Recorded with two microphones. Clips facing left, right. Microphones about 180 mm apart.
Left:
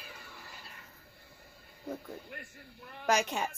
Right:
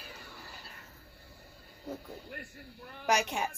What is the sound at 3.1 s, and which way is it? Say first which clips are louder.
Speech: even; 10° right (ahead or behind).